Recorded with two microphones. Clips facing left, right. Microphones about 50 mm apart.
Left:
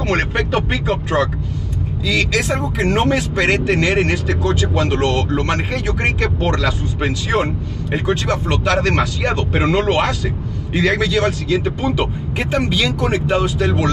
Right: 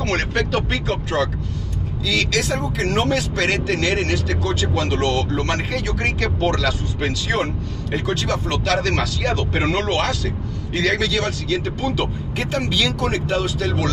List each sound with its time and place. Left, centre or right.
0.0 s speech: centre